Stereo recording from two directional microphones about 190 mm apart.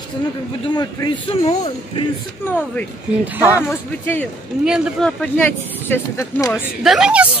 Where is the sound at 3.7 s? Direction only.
10° left (ahead or behind).